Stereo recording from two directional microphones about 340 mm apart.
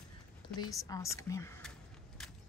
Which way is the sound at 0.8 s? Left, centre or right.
Centre.